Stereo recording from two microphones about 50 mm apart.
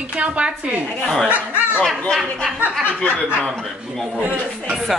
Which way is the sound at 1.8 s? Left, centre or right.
Centre.